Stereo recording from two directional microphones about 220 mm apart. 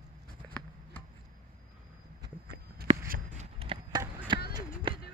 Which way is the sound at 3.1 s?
30° right (ahead or behind).